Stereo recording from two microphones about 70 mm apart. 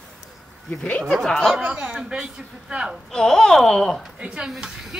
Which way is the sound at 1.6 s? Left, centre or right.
Centre.